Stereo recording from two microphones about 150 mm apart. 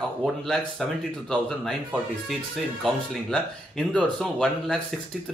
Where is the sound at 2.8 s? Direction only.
Centre (ahead or behind).